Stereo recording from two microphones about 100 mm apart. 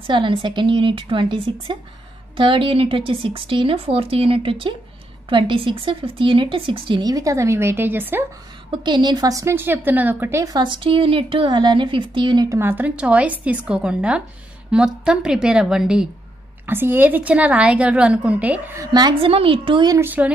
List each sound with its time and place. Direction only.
0.0 s a woman's voice: 55° right (ahead or behind)
7.0 s a woman's voice: 40° right (ahead or behind); by 8.3 s 20° right (ahead or behind)
8.8 s a woman's voice: 50° right (ahead or behind); by 10.3 s 20° right (ahead or behind)
10.3 s speech: 40° right (ahead or behind)
10.7 s a woman's voice: 60° right (ahead or behind)
12.4 s a woman's voice: 25° right (ahead or behind); by 16.1 s 5° right (ahead or behind)
16.6 s a woman's voice: 20° right (ahead or behind)
18.9 s a woman's voice: 45° right (ahead or behind)
19.2 s a woman's voice: 65° right (ahead or behind)
20.0 s a woman's voice: 15° right (ahead or behind)